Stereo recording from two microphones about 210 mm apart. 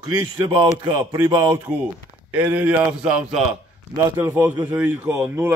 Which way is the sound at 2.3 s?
5° right (ahead or behind).